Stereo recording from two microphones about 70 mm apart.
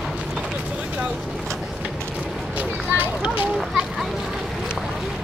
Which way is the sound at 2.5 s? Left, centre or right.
Right.